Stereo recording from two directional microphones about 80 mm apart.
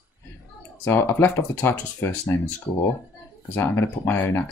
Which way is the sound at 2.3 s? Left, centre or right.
Left.